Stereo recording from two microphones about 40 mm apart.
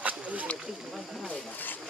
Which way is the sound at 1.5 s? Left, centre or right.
Left.